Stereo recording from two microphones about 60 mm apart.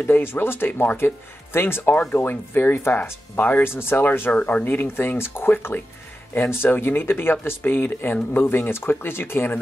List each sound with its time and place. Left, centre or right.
0.0 s speech: left
3.6 s speech: left
4.3 s speech: left